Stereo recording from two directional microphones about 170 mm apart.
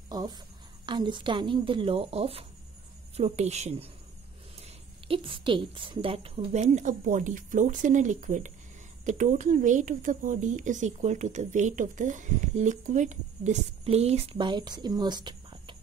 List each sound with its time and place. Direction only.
0.1 s speech: 25° right (ahead or behind)